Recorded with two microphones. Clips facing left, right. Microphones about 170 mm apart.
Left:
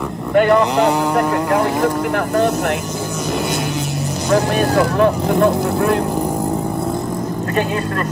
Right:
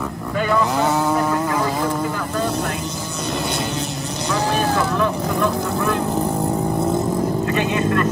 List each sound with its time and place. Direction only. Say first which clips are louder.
0.3 s cattle: left 7 dB; 70° left (ahead or behind)
1.1 s vehicle: left 4 dB; 65° left (ahead or behind)
4.3 s speech: left 5 dB; 65° left (ahead or behind)
7.5 s speech: left 2 dB; 40° left (ahead or behind)